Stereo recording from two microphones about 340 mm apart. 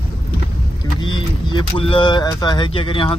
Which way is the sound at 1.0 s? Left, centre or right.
Centre.